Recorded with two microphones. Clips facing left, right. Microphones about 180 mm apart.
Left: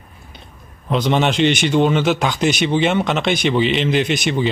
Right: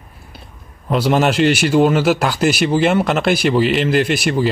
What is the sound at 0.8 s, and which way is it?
A man's voice, 5° right (ahead or behind).